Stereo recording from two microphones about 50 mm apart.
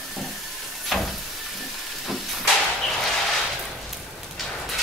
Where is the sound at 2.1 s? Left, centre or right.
Centre.